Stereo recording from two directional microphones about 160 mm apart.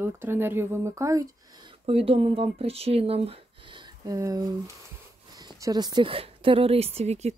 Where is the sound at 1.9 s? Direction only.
35° right (ahead or behind).